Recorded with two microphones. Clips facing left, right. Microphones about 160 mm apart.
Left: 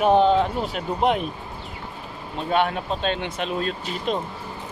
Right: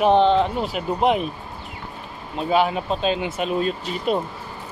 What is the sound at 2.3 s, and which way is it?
Speech, 5° right (ahead or behind).